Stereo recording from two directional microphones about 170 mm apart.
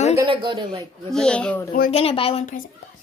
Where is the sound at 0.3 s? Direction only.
30° right (ahead or behind).